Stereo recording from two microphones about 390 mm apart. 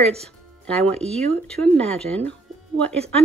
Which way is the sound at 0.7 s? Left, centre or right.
Centre.